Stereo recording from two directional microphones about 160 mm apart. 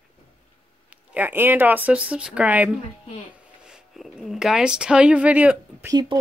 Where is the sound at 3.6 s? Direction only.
5° right (ahead or behind).